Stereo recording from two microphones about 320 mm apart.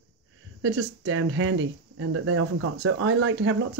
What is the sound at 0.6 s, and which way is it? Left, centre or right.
Speech, right.